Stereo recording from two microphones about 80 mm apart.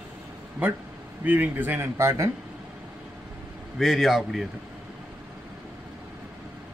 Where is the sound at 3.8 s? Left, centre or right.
Centre.